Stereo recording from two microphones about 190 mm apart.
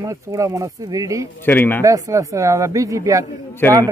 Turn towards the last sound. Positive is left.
turn(degrees=10)  # may be behind; listen again after turning